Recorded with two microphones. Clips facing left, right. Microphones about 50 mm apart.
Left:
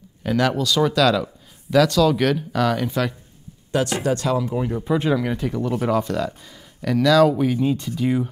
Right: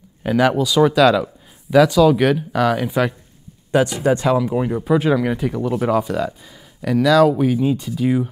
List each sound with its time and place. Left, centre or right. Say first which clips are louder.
0.2 s speech: right 4 dB; centre
4.8 s speech: right 4 dB; centre